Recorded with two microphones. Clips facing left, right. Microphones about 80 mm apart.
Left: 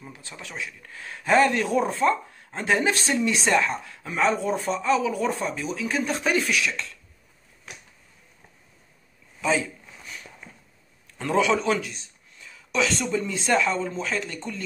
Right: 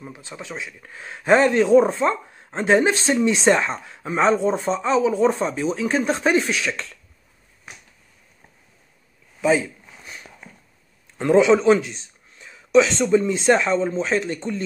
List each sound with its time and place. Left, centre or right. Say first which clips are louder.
0.0 s speech: right 5 dB; right
11.1 s a man's voice: right 7 dB; right